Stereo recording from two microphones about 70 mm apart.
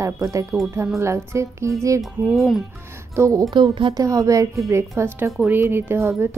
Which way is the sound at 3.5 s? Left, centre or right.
Right.